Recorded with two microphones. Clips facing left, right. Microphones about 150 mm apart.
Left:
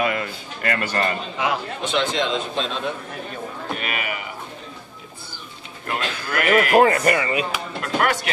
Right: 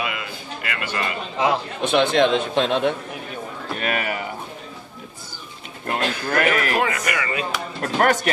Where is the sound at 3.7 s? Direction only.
40° right (ahead or behind).